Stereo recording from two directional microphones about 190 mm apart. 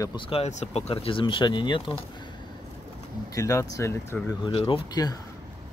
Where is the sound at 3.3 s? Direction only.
15° left (ahead or behind).